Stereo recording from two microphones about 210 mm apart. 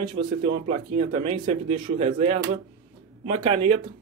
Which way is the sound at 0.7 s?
25° right (ahead or behind).